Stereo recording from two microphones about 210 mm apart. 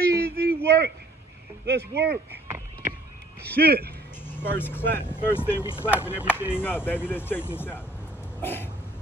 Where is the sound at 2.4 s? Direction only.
10° right (ahead or behind).